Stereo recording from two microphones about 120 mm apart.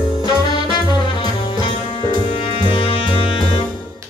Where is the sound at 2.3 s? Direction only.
50° left (ahead or behind).